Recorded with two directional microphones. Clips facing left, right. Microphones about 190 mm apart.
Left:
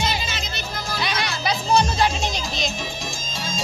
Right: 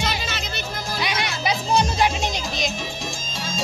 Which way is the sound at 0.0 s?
65° right (ahead or behind).